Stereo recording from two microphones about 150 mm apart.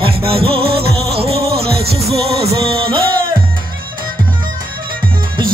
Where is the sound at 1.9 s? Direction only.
40° right (ahead or behind).